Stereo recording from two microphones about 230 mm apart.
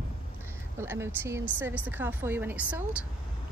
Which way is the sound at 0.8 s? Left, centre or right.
Centre.